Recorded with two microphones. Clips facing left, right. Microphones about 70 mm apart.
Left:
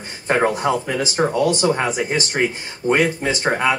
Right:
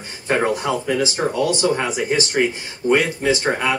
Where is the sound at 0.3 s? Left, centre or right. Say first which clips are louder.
Left 2 dB; left.